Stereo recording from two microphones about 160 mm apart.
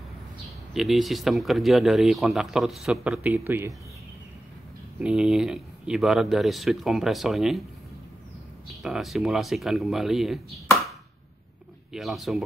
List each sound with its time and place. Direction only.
0.7 s speech: centre (ahead or behind)
3.3 s speech: 15° right (ahead or behind)
4.9 s speech: 5° right (ahead or behind)
8.8 s speech: centre (ahead or behind)
11.9 s speech: centre (ahead or behind)